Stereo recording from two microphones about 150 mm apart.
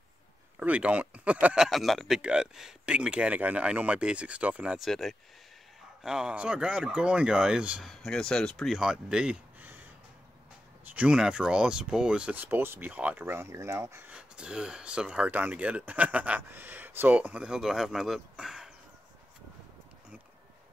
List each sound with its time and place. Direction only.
0.6 s speech: 10° right (ahead or behind)
10.9 s speech: 10° right (ahead or behind)